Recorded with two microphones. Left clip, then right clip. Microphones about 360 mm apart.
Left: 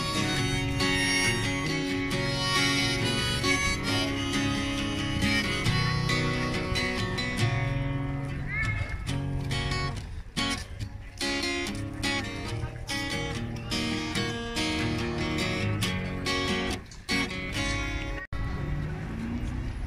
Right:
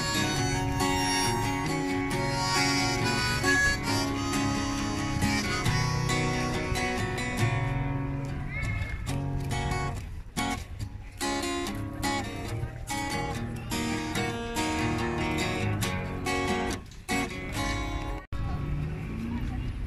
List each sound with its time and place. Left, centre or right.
0.0 s music: right
9.1 s music: right